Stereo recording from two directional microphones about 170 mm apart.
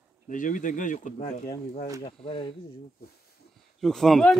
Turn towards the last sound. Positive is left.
turn(degrees=0)  # may be behind; listen again after turning